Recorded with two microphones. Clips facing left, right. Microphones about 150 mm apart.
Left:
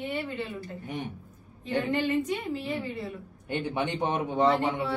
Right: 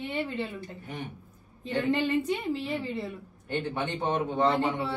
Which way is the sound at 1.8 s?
30° right (ahead or behind).